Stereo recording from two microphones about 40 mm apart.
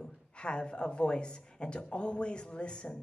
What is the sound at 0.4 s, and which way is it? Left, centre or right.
Speech, left.